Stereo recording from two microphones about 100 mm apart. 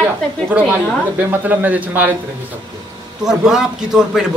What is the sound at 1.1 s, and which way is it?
A man's voice, 20° right (ahead or behind).